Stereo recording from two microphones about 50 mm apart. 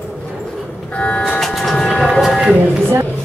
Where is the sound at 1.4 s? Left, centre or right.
Centre.